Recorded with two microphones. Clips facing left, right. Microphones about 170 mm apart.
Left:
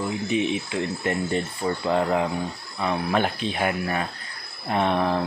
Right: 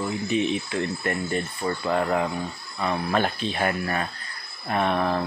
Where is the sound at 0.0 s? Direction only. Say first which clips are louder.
Even; 15° left (ahead or behind).